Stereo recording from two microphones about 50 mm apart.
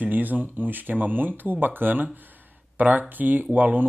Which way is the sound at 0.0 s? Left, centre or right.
Right.